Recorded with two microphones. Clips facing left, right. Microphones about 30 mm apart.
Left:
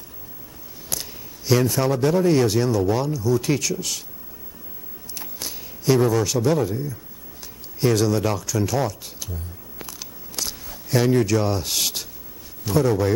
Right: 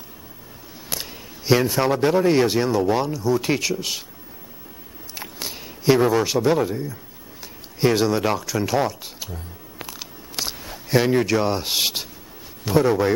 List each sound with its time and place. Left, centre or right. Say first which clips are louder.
0.8 s a man's voice: right 1 dB; right
5.1 s a sound: right 2 dB; right
7.8 s a man's voice: right 1 dB; right